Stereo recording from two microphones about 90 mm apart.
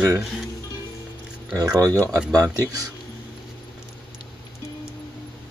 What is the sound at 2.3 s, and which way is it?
Speech, 40° right (ahead or behind).